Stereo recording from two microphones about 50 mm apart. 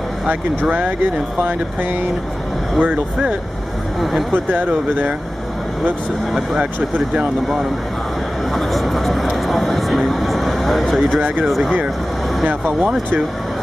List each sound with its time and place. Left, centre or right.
2.8 s speech: right
8.5 s a sound: centre
11.4 s speech: centre